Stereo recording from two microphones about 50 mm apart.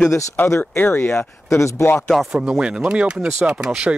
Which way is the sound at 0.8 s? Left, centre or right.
Left.